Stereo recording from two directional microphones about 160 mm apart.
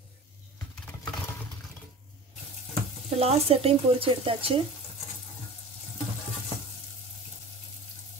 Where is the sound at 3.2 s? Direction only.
40° right (ahead or behind).